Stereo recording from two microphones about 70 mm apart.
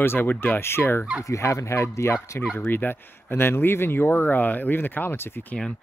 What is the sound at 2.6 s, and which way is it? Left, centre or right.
Speech, left.